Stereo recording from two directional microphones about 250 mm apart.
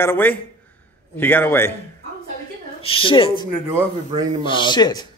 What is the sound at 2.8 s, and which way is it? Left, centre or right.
A woman's voice, left.